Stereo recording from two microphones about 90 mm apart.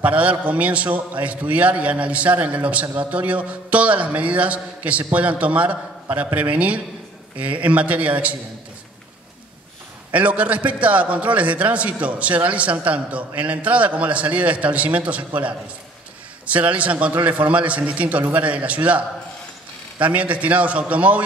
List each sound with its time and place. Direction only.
0.0 s a man's voice: 15° right (ahead or behind)
10.1 s a man's voice: 15° right (ahead or behind)